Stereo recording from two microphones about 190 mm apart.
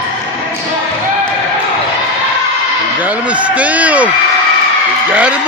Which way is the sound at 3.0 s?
5° right (ahead or behind).